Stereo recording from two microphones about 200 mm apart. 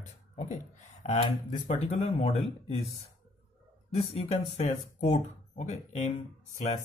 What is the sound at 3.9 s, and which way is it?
Speech, 30° left (ahead or behind).